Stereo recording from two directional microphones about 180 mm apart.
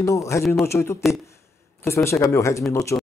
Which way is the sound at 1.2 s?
15° left (ahead or behind).